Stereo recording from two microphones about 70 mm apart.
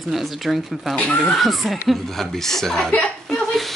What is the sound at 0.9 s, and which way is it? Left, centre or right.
Speech, centre.